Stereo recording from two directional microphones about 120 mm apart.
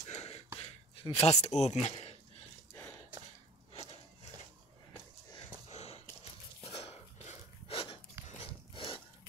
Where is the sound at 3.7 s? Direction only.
55° left (ahead or behind).